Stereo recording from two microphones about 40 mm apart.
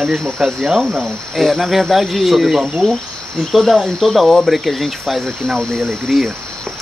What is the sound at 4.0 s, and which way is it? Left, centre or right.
Cricket, centre.